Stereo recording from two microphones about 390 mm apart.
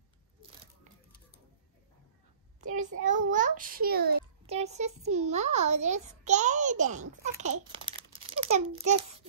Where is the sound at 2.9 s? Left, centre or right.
Centre.